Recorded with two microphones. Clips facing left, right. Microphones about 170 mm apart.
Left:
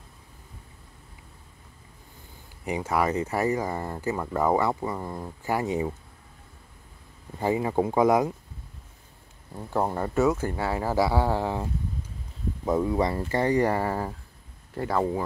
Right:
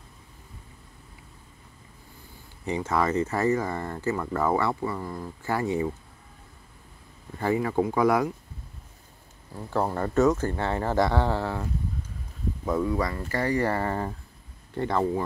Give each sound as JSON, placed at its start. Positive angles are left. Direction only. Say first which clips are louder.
{"t": 2.6, "sound": "speech", "louder": "even", "side_deg": 10}
{"t": 7.3, "sound": "speech", "louder": "even", "side_deg": 20}
{"t": 9.7, "sound": "speech", "louder": "even", "side_deg": 15}
{"t": 12.6, "sound": "speech", "louder": "left 2 dB", "side_deg": 25}